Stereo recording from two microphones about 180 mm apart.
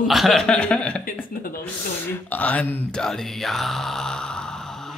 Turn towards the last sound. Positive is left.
turn(degrees=0)  # may be behind; listen again after turning